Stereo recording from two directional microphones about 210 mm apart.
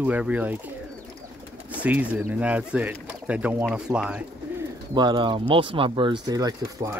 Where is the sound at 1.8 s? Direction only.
5° right (ahead or behind).